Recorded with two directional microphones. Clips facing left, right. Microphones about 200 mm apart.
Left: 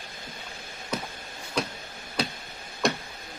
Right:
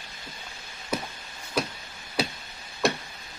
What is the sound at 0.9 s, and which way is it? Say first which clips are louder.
Chop: right 2 dB; 10° right (ahead or behind).